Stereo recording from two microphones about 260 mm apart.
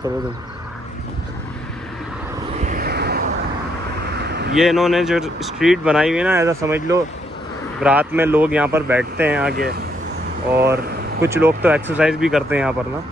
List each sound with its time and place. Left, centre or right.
2.6 s a sound: right
4.6 s speech: centre
9.5 s speech: right
10.5 s speech: centre